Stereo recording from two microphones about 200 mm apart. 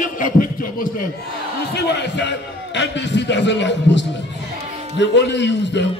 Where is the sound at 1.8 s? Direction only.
55° left (ahead or behind).